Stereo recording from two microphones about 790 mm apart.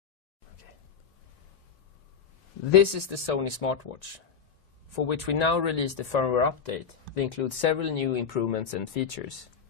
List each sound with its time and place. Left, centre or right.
2.7 s speech: left